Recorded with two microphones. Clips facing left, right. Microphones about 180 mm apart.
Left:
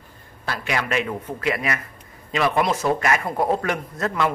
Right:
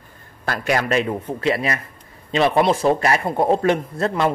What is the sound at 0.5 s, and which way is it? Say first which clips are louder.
Speech: right 5 dB; 40° right (ahead or behind).